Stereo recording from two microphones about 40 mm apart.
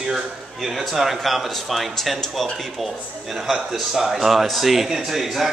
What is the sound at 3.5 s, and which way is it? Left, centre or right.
A man's voice, centre.